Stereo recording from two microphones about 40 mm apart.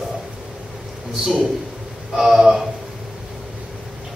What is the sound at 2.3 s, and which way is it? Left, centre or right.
Speech, centre.